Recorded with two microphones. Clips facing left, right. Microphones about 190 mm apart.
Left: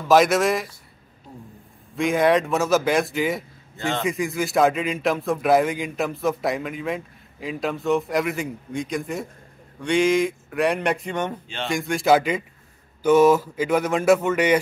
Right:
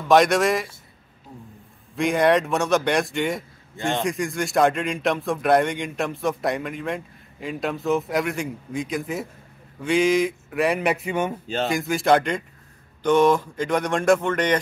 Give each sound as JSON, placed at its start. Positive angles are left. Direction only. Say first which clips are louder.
{"t": 0.1, "sound": "speech", "louder": "even", "side_deg": 0}
{"t": 2.0, "sound": "speech", "louder": "even", "side_deg": 0}
{"t": 11.4, "sound": "speech", "louder": "right 6 dB", "side_deg": -40}
{"t": 11.7, "sound": "speech", "louder": "left 1 dB", "side_deg": 0}